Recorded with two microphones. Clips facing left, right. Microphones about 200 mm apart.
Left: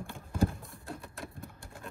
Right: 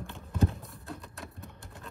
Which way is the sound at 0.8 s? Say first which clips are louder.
Left 1 dB; centre (ahead or behind).